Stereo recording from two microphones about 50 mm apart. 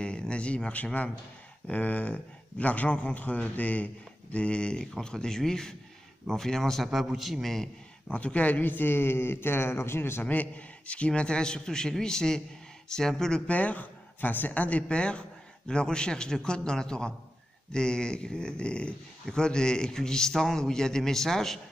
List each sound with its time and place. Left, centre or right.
0.0 s speech: left
1.7 s speech: left; by 6.9 s centre
6.9 s a man's voice: centre
8.1 s speech: left
10.2 s speech: left; by 13.0 s centre
13.5 s speech: left; by 21.5 s centre